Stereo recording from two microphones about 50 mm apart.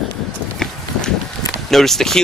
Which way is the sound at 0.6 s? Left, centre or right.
Centre.